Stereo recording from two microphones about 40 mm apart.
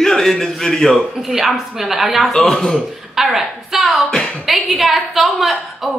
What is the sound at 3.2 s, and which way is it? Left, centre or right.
A woman's voice, centre.